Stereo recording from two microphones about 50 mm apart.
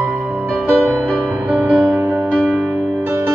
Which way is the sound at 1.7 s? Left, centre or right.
Right.